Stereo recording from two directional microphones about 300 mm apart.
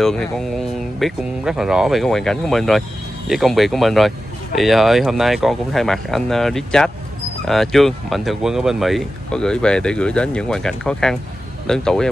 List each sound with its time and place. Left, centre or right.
0.0 s speech: centre